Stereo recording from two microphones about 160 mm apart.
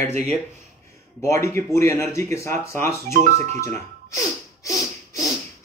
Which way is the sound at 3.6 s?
20° left (ahead or behind).